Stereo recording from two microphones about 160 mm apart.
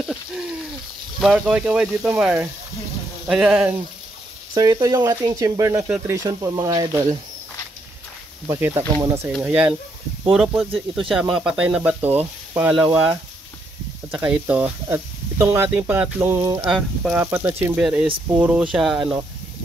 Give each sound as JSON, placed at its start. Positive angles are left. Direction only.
{"t": 0.1, "sound": "speech", "side_deg": -5}
{"t": 4.6, "sound": "speech", "side_deg": -25}
{"t": 8.5, "sound": "speech", "side_deg": -15}
{"t": 14.1, "sound": "speech", "side_deg": -10}
{"t": 16.6, "sound": "speech", "side_deg": -5}
{"t": 17.3, "sound": "speech", "side_deg": -15}